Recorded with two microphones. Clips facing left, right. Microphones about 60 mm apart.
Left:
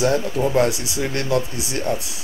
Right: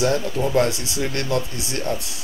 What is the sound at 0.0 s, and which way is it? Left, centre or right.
Speech, centre.